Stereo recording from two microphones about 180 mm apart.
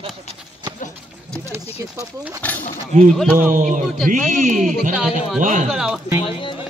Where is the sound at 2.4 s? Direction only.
10° left (ahead or behind).